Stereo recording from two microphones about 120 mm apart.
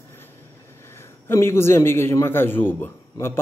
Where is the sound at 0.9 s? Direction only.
20° left (ahead or behind).